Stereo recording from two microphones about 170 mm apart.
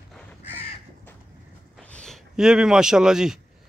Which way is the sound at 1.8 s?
5° left (ahead or behind).